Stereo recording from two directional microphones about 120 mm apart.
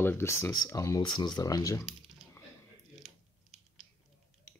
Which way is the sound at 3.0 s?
Centre (ahead or behind).